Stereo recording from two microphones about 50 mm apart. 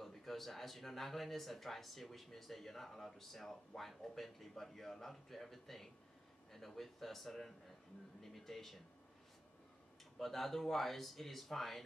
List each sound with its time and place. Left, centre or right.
0.0 s speech: centre
10.1 s speech: centre